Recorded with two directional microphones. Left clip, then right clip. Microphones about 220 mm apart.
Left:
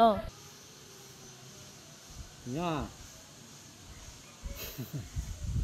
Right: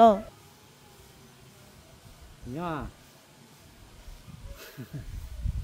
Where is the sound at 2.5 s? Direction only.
5° left (ahead or behind).